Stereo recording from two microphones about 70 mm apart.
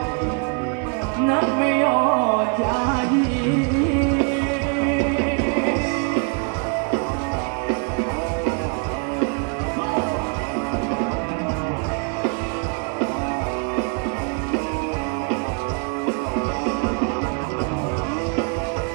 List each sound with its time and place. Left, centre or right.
1.2 s music: centre
16.1 s music: centre